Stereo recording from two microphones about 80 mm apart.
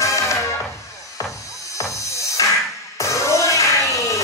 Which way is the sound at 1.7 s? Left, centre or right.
Left.